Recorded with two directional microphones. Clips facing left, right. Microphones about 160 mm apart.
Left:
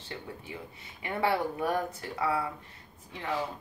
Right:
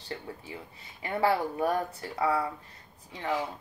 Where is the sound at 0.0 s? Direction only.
35° right (ahead or behind).